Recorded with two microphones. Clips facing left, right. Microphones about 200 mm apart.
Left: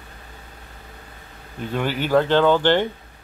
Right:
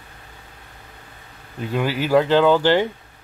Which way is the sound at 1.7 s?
10° right (ahead or behind).